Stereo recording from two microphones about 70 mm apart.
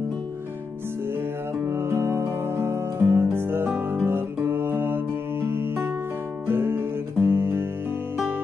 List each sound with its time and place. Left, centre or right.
1.7 s music: right